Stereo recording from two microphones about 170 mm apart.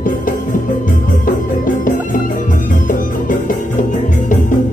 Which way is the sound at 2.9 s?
50° left (ahead or behind).